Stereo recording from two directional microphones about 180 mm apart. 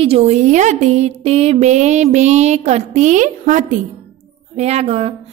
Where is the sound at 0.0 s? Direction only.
35° right (ahead or behind).